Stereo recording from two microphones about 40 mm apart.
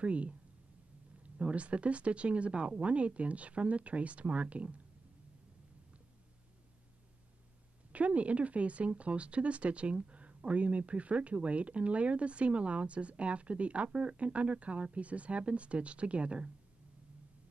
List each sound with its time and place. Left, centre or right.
0.0 s speech: right
7.9 s speech: right